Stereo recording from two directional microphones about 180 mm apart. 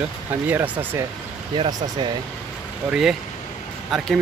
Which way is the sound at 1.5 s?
25° right (ahead or behind).